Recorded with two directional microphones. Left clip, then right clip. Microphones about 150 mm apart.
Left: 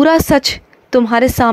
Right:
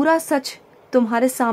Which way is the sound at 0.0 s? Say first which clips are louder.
Left 7 dB; 30° left (ahead or behind).